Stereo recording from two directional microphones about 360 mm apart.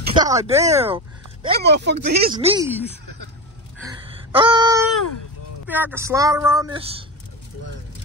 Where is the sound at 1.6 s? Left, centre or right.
Right.